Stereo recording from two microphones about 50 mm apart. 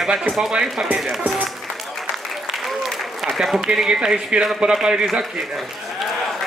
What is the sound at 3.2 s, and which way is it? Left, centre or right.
Speech, centre.